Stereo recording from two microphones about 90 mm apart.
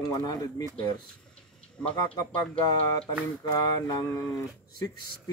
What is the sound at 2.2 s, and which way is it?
Speech, 40° left (ahead or behind).